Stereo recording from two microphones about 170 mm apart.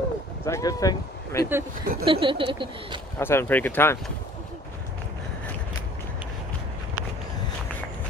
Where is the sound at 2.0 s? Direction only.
30° right (ahead or behind).